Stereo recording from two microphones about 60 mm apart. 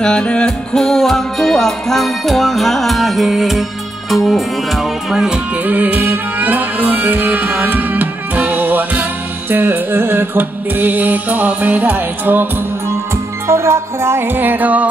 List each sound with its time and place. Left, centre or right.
0.0 s music: centre
5.6 s music: right
13.5 s music: right